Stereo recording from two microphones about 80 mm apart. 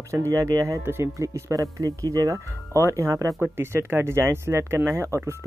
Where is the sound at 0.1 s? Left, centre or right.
Right.